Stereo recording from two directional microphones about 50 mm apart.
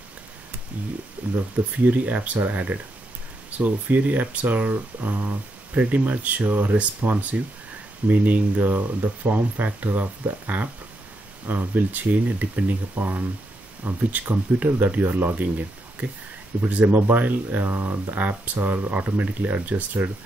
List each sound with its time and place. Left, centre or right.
1.2 s speech: right